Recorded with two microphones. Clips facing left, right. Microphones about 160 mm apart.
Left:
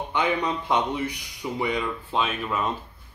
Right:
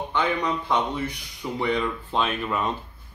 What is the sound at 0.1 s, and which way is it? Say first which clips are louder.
Speech: even; 15° left (ahead or behind).